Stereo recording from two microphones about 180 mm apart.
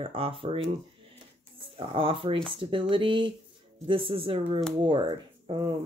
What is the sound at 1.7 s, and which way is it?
Speech, 30° right (ahead or behind).